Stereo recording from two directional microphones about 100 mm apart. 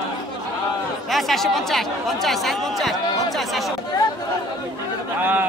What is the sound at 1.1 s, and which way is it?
Speech, centre (ahead or behind).